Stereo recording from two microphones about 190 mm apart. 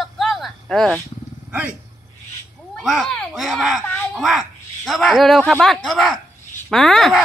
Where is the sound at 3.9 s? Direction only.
Centre (ahead or behind).